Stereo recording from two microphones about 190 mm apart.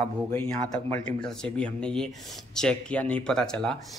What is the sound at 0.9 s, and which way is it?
Speech, 5° left (ahead or behind).